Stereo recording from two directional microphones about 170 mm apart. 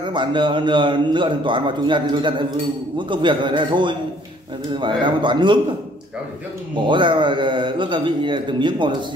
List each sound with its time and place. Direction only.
0.0 s a man's voice: 30° right (ahead or behind)
6.9 s a man's voice: 30° right (ahead or behind)